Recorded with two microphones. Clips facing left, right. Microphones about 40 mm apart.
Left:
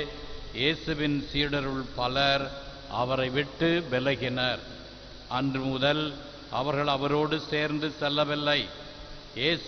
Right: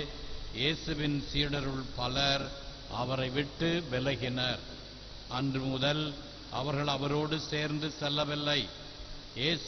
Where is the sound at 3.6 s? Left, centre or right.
Left.